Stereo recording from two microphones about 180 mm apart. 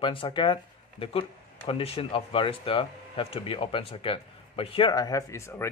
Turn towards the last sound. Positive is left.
turn(degrees=15)  # may be behind; listen again after turning